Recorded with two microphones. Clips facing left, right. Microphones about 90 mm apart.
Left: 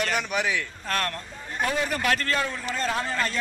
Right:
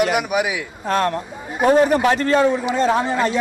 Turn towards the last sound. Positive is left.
turn(degrees=-15)  # may be behind; listen again after turning